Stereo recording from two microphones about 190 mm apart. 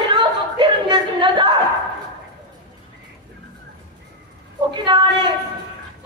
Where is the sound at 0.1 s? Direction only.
25° right (ahead or behind).